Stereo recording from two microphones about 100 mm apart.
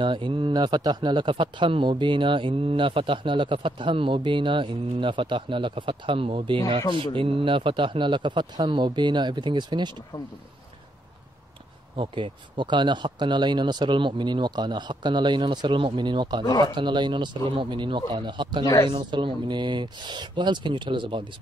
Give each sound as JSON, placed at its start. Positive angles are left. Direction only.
{"t": 0.0, "sound": "a man's voice", "side_deg": -55}
{"t": 12.0, "sound": "speech", "side_deg": -55}
{"t": 16.4, "sound": "speech", "side_deg": 45}
{"t": 16.7, "sound": "speech", "side_deg": -50}